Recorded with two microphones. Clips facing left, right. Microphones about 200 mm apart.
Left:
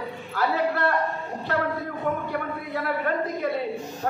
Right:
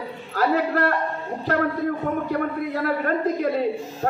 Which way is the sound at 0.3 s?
40° right (ahead or behind).